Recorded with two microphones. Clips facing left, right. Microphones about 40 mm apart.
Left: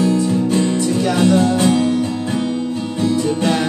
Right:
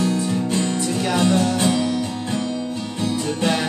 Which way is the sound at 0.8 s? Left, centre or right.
Centre.